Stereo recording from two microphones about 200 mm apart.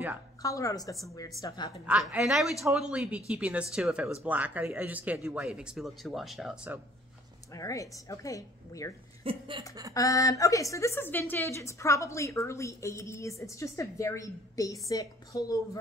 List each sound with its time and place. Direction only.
0.4 s a woman's voice: 15° left (ahead or behind)
1.9 s speech: 5° right (ahead or behind)
7.5 s a woman's voice: 15° left (ahead or behind)
9.2 s chuckle: 25° right (ahead or behind)
9.9 s a woman's voice: 15° left (ahead or behind)